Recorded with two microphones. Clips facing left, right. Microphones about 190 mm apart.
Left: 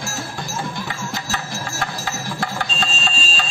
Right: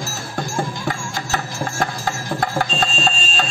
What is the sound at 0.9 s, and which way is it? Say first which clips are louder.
Music: right 3 dB; 50° right (ahead or behind).